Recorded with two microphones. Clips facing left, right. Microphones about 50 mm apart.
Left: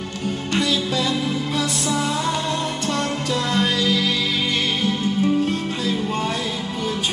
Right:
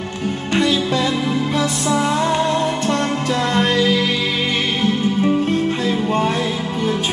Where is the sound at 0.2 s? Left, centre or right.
Centre.